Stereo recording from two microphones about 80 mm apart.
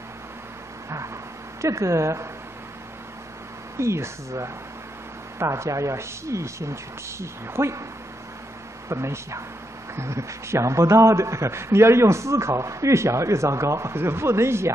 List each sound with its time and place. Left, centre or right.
1.6 s a man's voice: right
3.7 s a man's voice: right
8.8 s a man's voice: right